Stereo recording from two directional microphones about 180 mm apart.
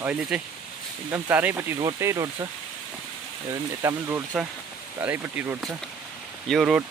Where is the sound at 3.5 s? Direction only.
15° right (ahead or behind).